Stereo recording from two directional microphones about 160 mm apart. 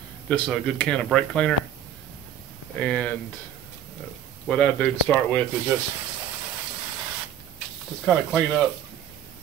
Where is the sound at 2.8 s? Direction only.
10° left (ahead or behind).